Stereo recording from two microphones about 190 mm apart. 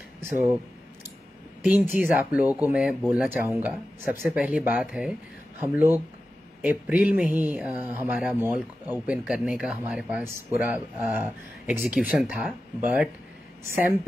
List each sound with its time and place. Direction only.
0.2 s speech: 15° right (ahead or behind)
1.6 s speech: 10° right (ahead or behind)